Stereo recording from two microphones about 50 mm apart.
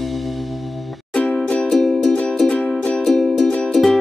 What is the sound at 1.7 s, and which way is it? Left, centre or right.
Music, centre.